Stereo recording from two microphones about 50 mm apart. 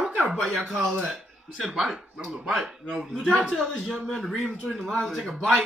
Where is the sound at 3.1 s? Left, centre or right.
Centre.